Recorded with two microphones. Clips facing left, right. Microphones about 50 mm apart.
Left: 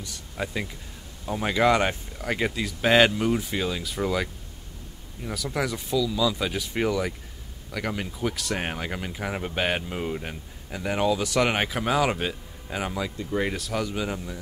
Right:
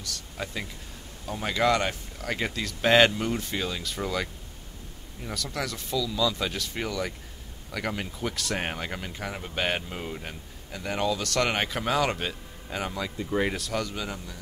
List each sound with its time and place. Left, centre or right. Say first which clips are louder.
0.0 s speech: left 3 dB; centre
7.7 s speech: left 1 dB; centre
9.3 s speech: left 6 dB; left
9.6 s speech: left 1 dB; centre
13.2 s speech: right 2 dB; centre